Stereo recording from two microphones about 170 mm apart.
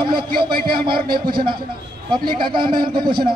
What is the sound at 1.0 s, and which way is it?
Speech, 60° right (ahead or behind).